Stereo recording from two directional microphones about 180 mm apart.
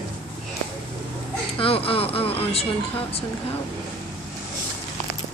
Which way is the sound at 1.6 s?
30° left (ahead or behind).